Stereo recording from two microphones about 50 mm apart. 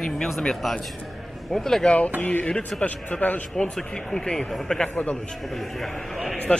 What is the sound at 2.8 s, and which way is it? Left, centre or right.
Speech, left.